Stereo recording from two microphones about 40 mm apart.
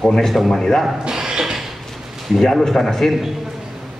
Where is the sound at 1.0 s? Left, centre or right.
Centre.